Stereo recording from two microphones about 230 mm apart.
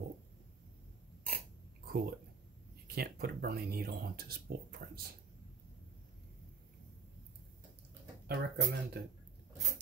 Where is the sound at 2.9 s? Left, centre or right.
Right.